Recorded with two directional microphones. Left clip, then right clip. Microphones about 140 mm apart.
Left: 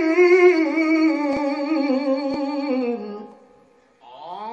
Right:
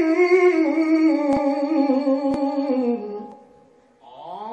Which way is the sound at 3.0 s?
15° left (ahead or behind).